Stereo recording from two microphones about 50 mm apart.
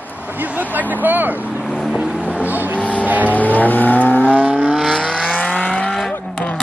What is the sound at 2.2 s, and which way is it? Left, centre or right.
Vehicle, right.